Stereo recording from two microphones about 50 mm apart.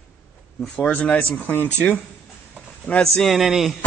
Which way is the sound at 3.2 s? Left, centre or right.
Centre.